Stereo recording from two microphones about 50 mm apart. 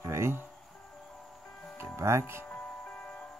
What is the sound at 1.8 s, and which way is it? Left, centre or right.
Speech, right.